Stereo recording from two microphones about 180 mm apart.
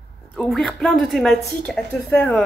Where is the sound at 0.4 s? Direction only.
Centre (ahead or behind).